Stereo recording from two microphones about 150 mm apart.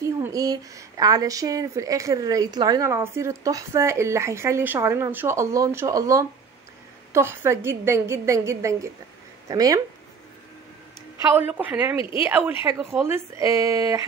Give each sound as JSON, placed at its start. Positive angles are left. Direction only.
{"t": 0.0, "sound": "a woman's voice", "side_deg": -20}
{"t": 11.3, "sound": "a woman's voice", "side_deg": -10}
{"t": 12.0, "sound": "speech", "side_deg": 35}
{"t": 12.3, "sound": "a woman's voice", "side_deg": -10}